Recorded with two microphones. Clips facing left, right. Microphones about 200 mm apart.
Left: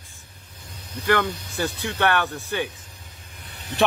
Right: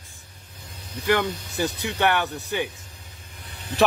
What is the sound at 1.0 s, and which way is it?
Speech, 15° right (ahead or behind).